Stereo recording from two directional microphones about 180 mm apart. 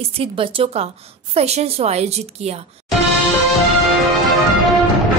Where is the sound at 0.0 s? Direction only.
30° right (ahead or behind).